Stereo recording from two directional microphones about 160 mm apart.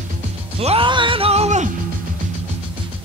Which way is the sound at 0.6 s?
35° right (ahead or behind).